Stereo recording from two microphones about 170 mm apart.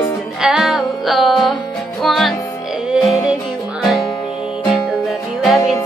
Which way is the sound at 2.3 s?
20° left (ahead or behind).